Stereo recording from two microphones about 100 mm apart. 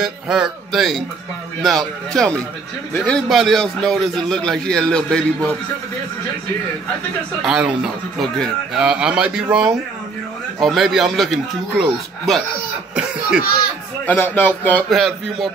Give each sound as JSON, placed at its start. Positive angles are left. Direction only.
{"t": 0.0, "sound": "a man's voice", "side_deg": -5}
{"t": 7.4, "sound": "a man's voice", "side_deg": -10}
{"t": 14.0, "sound": "speech", "side_deg": 20}
{"t": 14.9, "sound": "a man's voice", "side_deg": 0}